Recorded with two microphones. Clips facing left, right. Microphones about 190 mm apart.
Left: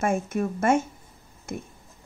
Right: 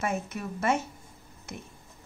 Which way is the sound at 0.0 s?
50° left (ahead or behind).